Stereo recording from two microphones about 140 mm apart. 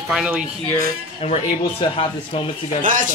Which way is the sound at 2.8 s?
70° right (ahead or behind).